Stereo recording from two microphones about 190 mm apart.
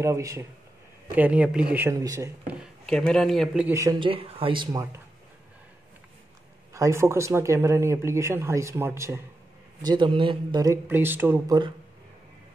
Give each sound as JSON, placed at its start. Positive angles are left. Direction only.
{"t": 0.0, "sound": "speech", "side_deg": -15}
{"t": 2.6, "sound": "speech", "side_deg": 5}
{"t": 3.7, "sound": "speech", "side_deg": -15}
{"t": 4.1, "sound": "speech", "side_deg": -30}
{"t": 6.7, "sound": "speech", "side_deg": -15}